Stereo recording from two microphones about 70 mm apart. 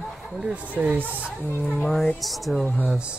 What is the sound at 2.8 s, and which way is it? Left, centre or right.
Speech, centre.